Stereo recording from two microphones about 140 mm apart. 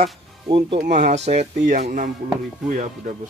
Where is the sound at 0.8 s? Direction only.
55° right (ahead or behind); by 2.1 s 70° right (ahead or behind).